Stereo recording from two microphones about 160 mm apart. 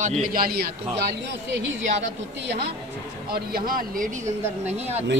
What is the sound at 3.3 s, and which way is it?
Speech, 65° right (ahead or behind).